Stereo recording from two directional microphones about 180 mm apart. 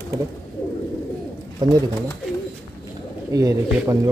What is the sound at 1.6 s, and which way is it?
Speech, 20° right (ahead or behind).